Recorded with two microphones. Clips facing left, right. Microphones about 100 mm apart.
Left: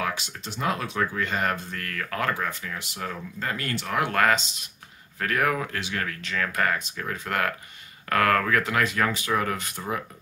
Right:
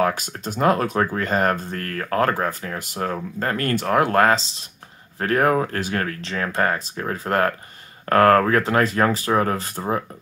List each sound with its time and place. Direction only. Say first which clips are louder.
0.0 s speech: right 8 dB; 45° right (ahead or behind)